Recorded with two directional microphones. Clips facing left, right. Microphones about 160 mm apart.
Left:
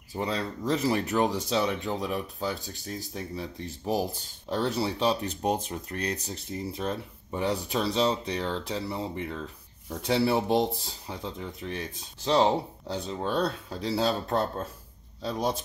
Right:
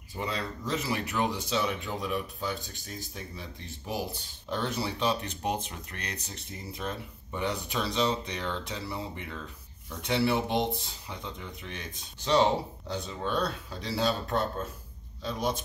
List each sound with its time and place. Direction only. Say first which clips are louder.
0.1 s speech: left 4 dB; 35° left (ahead or behind)